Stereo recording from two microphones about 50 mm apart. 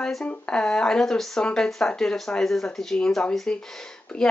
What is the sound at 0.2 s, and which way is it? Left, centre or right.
Speech, centre.